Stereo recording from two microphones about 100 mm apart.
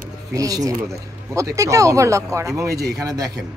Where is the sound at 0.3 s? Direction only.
35° right (ahead or behind).